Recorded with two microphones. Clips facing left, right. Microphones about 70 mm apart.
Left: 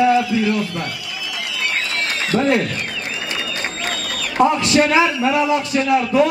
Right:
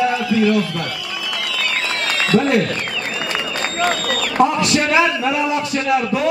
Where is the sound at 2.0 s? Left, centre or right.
Right.